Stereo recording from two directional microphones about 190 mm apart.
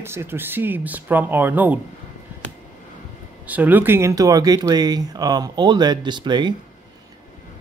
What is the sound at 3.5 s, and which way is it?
Speech, 10° right (ahead or behind).